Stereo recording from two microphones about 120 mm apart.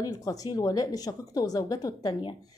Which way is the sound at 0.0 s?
30° left (ahead or behind).